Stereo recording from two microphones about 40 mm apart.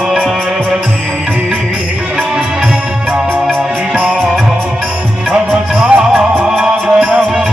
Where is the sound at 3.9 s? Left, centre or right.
Right.